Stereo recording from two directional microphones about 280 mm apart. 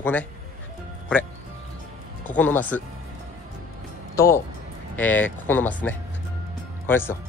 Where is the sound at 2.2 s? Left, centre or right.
Centre.